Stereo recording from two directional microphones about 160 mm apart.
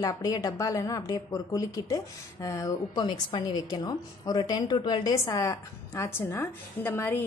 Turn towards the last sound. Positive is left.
turn(degrees=15)  # may be behind; listen again after turning